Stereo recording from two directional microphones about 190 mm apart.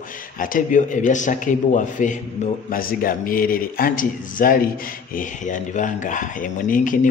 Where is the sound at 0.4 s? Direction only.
45° left (ahead or behind).